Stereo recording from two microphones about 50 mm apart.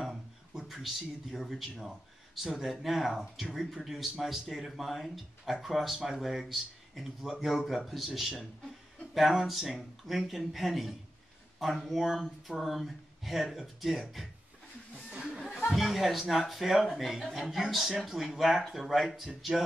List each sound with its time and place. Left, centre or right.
0.0 s speech: centre
15.7 s speech: centre